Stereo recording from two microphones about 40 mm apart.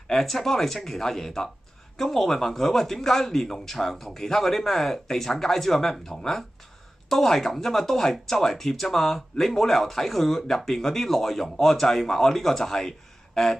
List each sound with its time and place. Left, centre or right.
0.1 s a man's voice: centre